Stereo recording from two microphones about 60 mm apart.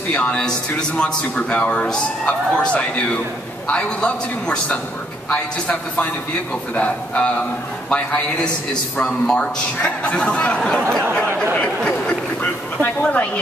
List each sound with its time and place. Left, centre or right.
0.1 s a man's voice: centre
9.0 s a man's voice: centre